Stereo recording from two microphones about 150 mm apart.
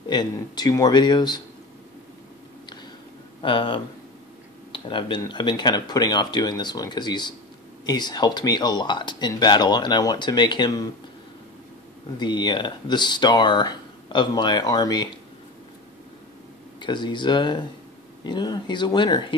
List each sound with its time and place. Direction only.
0.1 s speech: 25° left (ahead or behind)
3.4 s speech: 35° left (ahead or behind)
12.2 s speech: 30° left (ahead or behind)
16.8 s speech: 30° left (ahead or behind)